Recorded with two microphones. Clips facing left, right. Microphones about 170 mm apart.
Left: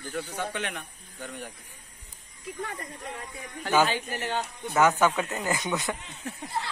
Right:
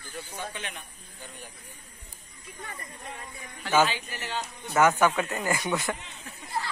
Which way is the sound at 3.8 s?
50° left (ahead or behind).